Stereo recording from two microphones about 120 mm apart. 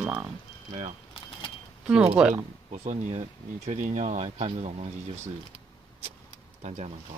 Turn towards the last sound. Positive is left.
turn(degrees=-70)  # may be behind; listen again after turning